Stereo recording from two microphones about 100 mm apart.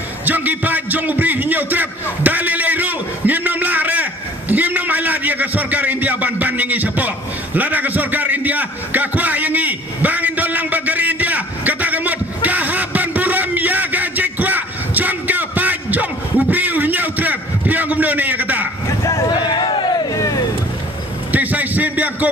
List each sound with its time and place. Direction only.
0.2 s a man's voice: 15° right (ahead or behind)
19.0 s speech: 35° left (ahead or behind)
19.3 s crowd: 50° left (ahead or behind)
21.3 s a sound: 15° right (ahead or behind)